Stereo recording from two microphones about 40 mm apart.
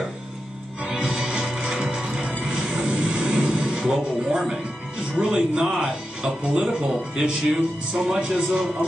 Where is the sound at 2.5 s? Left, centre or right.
Centre.